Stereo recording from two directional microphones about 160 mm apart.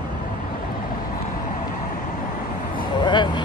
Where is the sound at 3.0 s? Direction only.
30° left (ahead or behind).